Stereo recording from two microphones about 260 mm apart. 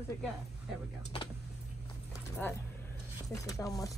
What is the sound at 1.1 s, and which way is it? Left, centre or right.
Vehicle, left.